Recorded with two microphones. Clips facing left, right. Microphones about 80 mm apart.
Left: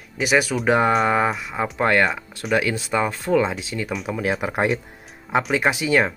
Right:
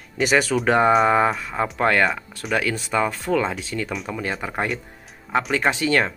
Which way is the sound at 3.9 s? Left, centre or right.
Centre.